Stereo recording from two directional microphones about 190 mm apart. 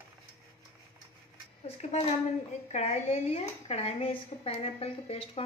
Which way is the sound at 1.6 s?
35° left (ahead or behind).